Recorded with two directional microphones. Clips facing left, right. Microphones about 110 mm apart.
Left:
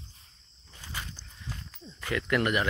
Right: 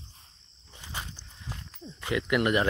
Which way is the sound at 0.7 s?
20° right (ahead or behind).